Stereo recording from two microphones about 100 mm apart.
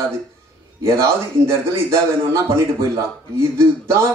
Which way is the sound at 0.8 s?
30° right (ahead or behind).